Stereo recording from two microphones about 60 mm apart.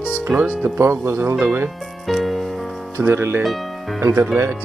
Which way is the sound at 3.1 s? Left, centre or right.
Right.